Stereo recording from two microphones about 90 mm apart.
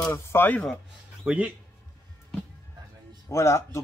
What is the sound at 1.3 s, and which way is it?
Speech, 10° right (ahead or behind).